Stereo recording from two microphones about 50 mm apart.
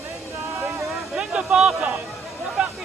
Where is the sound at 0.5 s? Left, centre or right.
Right.